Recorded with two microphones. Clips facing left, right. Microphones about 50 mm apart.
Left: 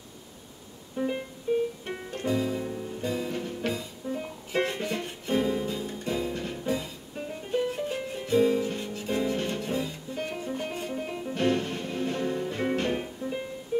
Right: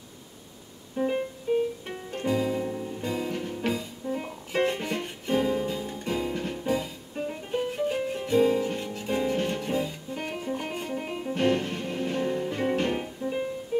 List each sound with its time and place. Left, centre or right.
0.9 s music: centre
2.1 s music: centre